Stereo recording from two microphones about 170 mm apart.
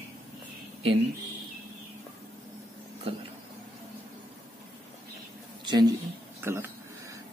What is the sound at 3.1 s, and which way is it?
Speech, 35° right (ahead or behind).